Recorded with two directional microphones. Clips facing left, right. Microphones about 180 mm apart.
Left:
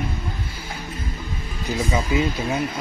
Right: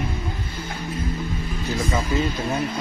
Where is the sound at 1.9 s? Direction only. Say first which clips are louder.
Left 2 dB; 10° left (ahead or behind).